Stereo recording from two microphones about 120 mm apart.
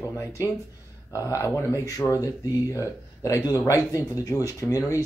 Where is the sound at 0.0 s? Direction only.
25° left (ahead or behind).